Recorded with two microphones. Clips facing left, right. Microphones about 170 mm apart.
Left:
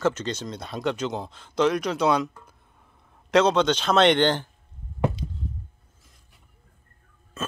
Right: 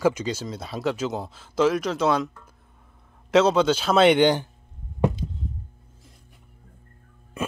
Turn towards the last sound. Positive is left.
turn(degrees=-15)  # may be behind; listen again after turning